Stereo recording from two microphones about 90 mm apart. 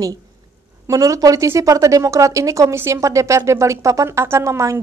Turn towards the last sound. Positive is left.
turn(degrees=-35)  # may be behind; listen again after turning